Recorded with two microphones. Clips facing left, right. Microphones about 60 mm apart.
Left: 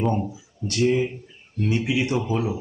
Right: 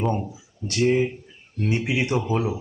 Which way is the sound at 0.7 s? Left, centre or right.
Right.